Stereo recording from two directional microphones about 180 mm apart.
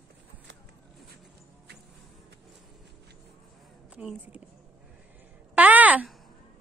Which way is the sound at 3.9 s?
5° right (ahead or behind).